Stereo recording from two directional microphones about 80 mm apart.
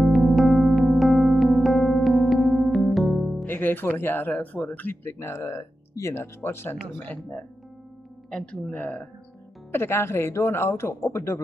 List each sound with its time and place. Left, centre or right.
0.0 s electric piano: centre
3.4 s speech: left
8.3 s speech: centre
9.7 s speech: left